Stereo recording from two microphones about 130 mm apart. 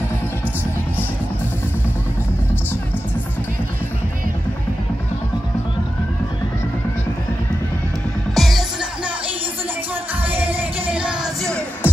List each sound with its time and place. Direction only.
8.4 s music: centre (ahead or behind)
10.2 s music: 15° right (ahead or behind)
11.8 s music: 15° left (ahead or behind)